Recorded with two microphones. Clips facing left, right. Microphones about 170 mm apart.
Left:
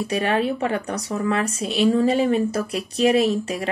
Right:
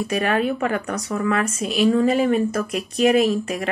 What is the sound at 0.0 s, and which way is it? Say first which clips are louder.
Speech: right 1 dB; 30° left (ahead or behind).